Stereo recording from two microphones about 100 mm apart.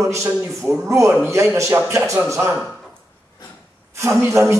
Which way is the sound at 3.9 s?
30° right (ahead or behind).